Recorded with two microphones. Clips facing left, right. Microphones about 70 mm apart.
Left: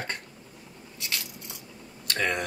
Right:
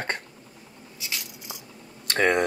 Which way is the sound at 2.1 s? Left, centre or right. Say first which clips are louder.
Right 7 dB; right.